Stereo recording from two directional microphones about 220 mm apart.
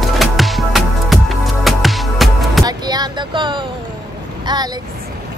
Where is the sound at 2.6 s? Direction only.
20° right (ahead or behind).